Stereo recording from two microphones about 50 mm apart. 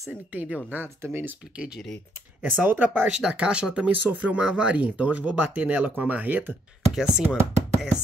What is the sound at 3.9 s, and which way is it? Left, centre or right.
Speech, right.